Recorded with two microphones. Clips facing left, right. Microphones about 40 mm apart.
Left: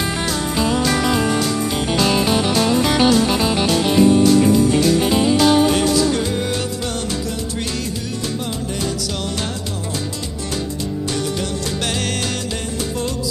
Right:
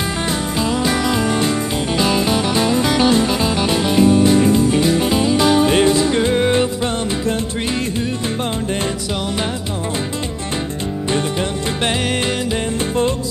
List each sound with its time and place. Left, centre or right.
5.7 s music: right
11.1 s music: right